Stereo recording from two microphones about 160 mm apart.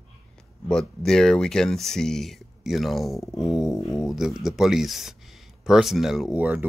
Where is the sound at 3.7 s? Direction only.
20° left (ahead or behind).